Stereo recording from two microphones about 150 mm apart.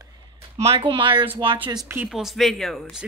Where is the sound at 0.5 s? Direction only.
40° right (ahead or behind).